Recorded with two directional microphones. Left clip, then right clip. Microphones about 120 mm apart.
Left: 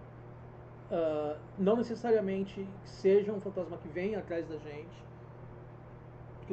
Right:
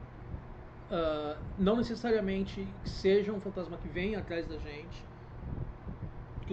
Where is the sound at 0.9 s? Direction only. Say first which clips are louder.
Left 1 dB; 30° right (ahead or behind).